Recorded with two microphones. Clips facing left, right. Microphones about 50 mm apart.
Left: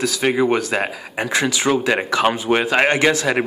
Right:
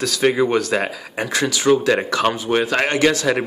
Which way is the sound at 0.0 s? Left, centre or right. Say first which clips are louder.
Right 1 dB; centre.